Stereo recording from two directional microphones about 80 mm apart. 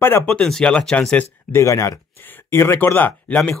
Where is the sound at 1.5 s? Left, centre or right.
Left.